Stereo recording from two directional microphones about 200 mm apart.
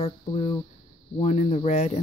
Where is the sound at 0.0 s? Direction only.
30° left (ahead or behind).